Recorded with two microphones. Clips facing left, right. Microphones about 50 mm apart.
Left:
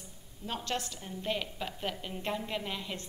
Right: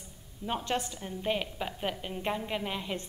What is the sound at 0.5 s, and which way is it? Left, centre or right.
A woman's voice, centre.